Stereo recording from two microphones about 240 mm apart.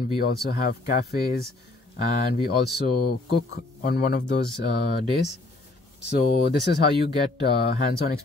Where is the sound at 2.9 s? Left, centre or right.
Left.